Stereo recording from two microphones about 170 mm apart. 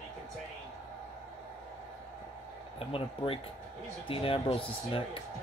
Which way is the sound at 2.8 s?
35° left (ahead or behind).